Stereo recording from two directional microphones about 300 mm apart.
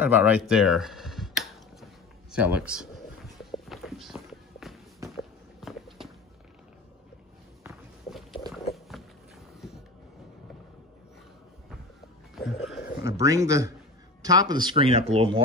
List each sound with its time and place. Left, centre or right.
0.0 s a sound: centre
2.3 s speech: centre
3.5 s walk: centre
7.6 s walk: centre
8.7 s dog: centre
12.4 s music: centre
13.0 s speech: centre